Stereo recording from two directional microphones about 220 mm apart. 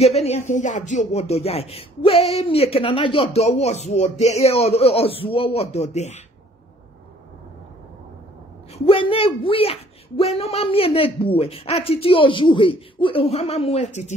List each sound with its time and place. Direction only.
0.0 s speech: 30° left (ahead or behind)
8.7 s speech: 25° left (ahead or behind)